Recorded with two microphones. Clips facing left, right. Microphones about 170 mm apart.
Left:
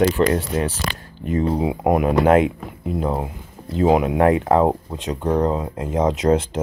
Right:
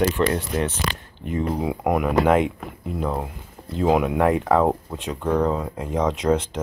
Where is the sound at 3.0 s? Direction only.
25° left (ahead or behind).